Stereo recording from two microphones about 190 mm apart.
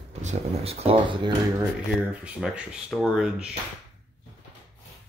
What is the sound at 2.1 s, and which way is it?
Speech, 5° right (ahead or behind).